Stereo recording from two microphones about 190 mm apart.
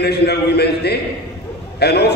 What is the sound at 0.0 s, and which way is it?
A man's voice, 60° left (ahead or behind).